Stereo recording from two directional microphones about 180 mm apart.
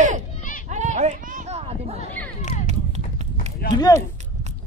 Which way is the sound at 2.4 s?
40° left (ahead or behind).